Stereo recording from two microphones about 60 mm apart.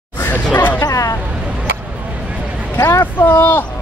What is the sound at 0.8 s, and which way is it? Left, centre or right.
Speech, left.